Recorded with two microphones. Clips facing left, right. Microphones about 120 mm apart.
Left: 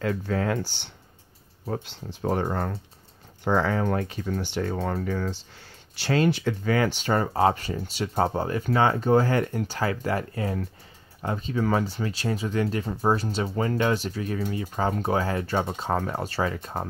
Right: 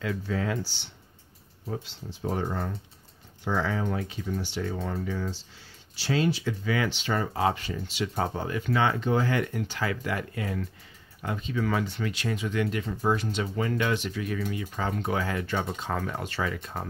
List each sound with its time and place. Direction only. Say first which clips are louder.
0.0 s speech: left 4 dB; 50° left (ahead or behind)